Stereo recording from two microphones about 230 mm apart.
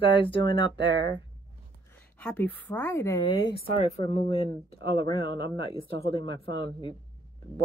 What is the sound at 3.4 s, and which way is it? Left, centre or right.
Speech, left.